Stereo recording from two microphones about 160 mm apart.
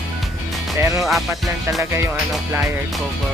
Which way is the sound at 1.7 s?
20° right (ahead or behind).